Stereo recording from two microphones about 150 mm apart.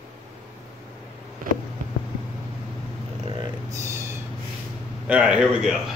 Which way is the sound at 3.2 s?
35° right (ahead or behind).